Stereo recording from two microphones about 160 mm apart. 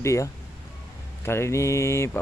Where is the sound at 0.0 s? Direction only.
20° left (ahead or behind).